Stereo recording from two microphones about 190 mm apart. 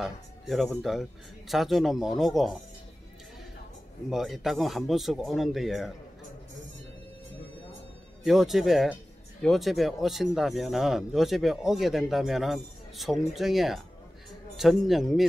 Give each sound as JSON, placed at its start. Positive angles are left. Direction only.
{"t": 0.0, "sound": "speech", "side_deg": 0}
{"t": 4.1, "sound": "speech", "side_deg": 0}
{"t": 8.2, "sound": "speech", "side_deg": 0}